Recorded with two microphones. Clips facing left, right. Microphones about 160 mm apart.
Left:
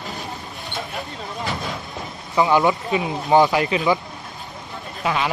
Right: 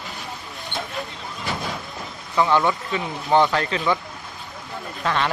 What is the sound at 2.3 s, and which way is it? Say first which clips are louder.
Speech: left 2 dB; 20° left (ahead or behind).